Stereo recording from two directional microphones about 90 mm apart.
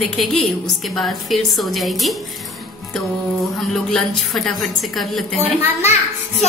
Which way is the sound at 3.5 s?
5° left (ahead or behind).